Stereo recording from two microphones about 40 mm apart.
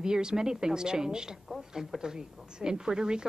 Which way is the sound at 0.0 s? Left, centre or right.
Centre.